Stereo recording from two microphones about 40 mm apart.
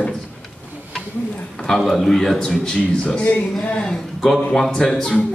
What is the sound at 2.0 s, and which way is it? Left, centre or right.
Speech, centre.